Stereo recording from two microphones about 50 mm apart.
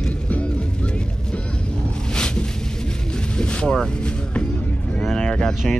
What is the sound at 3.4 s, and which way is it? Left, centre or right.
Vehicle, centre.